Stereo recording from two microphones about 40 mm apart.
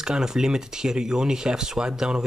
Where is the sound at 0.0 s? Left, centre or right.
Centre.